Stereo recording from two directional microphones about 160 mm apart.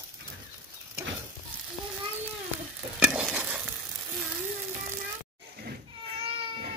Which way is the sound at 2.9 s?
5° right (ahead or behind).